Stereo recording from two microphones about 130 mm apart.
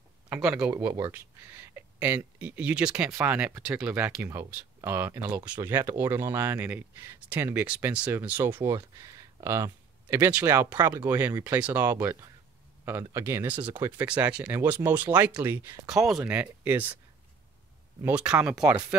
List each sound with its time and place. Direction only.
0.5 s speech: 10° right (ahead or behind)
15.9 s speech: 5° right (ahead or behind)
18.0 s speech: 10° right (ahead or behind)